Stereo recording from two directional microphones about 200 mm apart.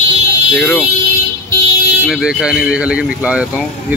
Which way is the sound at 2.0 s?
5° right (ahead or behind).